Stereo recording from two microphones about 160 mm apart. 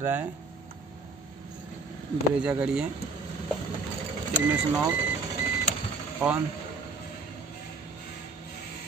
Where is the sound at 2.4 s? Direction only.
5° right (ahead or behind).